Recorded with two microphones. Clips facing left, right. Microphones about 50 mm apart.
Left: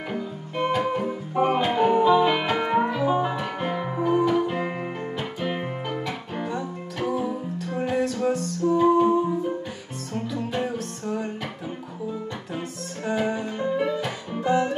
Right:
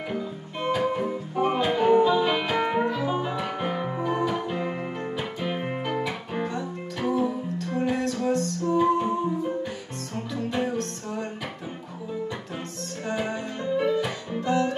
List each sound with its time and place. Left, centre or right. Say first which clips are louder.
0.6 s music: left 1 dB; centre
4.6 s music: left 1 dB; left
5.4 s music: left 2 dB; centre
5.9 s music: right 1 dB; centre
6.4 s music: left 1 dB; centre
10.1 s music: left 1 dB; centre
13.0 s music: left 4 dB; centre
14.4 s music: left 2 dB; centre